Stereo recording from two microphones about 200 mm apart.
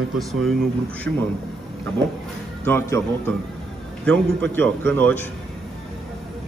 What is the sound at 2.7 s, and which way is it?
A man's voice, 15° left (ahead or behind).